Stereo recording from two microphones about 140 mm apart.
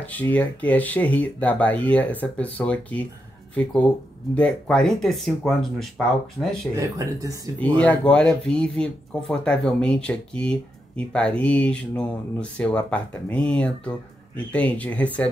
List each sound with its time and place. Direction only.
0.0 s speech: 10° left (ahead or behind)
4.4 s speech: 5° left (ahead or behind)
6.4 s speech: 10° right (ahead or behind)
6.7 s speech: 25° right (ahead or behind)
7.5 s speech: 10° left (ahead or behind)